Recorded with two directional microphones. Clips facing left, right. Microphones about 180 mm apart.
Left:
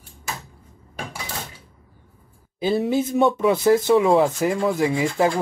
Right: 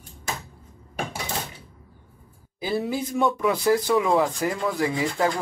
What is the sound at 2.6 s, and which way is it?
Speech, 25° left (ahead or behind).